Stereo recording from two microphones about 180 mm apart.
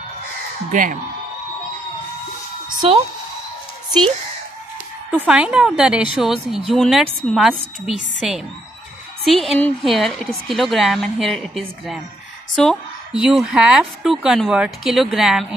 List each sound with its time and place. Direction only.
0.7 s a man's voice: 50° right (ahead or behind)
2.8 s a woman's voice: 30° right (ahead or behind)
5.1 s a woman's voice: 5° right (ahead or behind)